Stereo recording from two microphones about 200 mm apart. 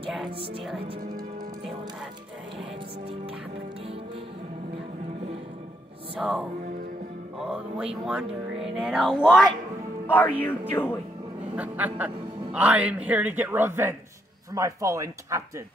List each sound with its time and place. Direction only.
6.1 s a man's voice: centre (ahead or behind)
11.5 s a man's voice: 5° right (ahead or behind)